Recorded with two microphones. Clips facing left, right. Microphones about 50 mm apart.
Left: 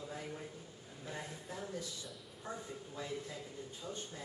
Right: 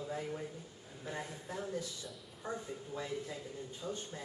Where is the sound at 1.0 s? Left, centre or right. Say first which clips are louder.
Right 3 dB; centre.